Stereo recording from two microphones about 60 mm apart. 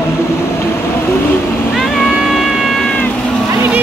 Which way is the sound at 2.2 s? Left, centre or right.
Centre.